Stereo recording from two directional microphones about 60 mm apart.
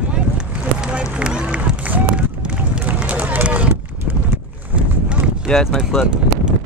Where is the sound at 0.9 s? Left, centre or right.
Centre.